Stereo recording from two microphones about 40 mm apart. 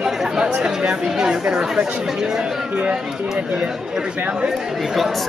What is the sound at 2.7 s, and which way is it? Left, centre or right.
Speech, right.